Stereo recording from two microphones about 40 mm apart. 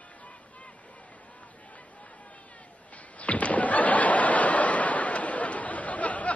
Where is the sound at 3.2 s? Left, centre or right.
Left.